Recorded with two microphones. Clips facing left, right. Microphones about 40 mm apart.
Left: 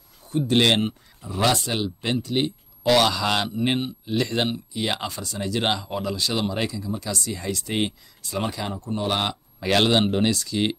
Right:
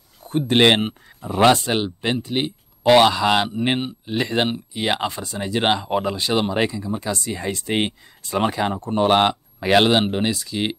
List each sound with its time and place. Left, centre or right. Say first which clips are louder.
0.2 s speech: right 4 dB; right; by 10.8 s centre